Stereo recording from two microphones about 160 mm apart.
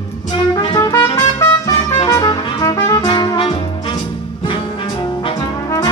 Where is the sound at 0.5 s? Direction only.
30° left (ahead or behind).